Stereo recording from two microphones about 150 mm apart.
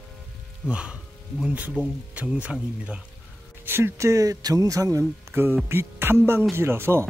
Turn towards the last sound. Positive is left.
turn(degrees=-15)  # may be behind; listen again after turning